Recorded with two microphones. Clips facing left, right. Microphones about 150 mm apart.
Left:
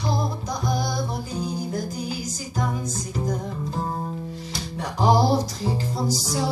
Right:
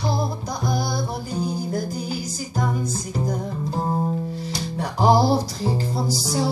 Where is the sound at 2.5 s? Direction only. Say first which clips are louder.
Right 2 dB; 30° right (ahead or behind).